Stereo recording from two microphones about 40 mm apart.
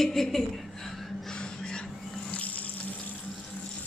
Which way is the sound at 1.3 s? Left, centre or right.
Left.